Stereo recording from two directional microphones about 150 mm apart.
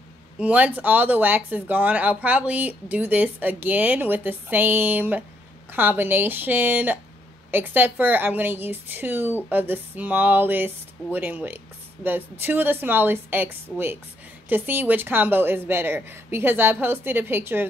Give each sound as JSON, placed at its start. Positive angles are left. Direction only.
{"t": 0.4, "sound": "a woman's voice", "side_deg": -10}